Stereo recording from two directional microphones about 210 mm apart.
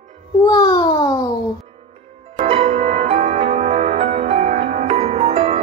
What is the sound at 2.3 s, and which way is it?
Music, 25° right (ahead or behind).